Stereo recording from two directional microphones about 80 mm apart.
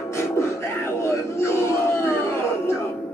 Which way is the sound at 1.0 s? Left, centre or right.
Left.